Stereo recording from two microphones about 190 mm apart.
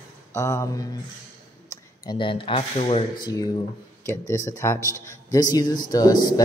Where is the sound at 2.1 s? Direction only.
25° left (ahead or behind).